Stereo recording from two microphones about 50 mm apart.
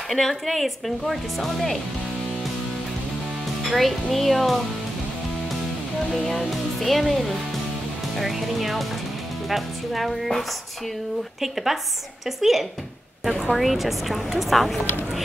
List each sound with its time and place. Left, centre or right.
0.1 s speech: centre
3.7 s a woman's voice: centre
6.1 s a woman's voice: centre
11.4 s a woman's voice: centre